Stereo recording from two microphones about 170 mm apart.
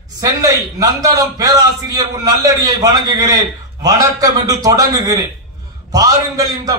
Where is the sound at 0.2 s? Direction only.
20° right (ahead or behind).